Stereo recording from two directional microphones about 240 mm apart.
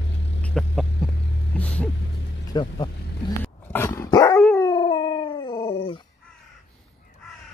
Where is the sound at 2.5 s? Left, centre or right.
Centre.